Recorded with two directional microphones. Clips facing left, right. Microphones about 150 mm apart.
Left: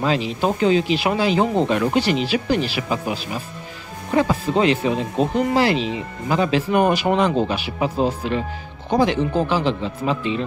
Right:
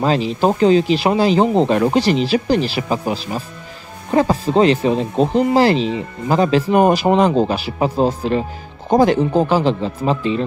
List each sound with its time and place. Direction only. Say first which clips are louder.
0.0 s speech: right 4 dB; 35° right (ahead or behind)